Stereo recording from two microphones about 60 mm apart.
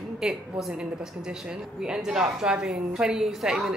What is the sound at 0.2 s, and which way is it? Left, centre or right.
A woman's voice, centre.